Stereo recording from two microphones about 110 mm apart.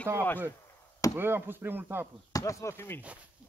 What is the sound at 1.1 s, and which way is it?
Speech, 20° right (ahead or behind).